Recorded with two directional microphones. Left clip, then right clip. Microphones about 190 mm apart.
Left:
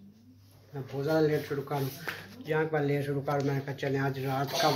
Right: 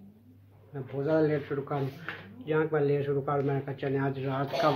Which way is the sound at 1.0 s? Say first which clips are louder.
Even; 10° right (ahead or behind).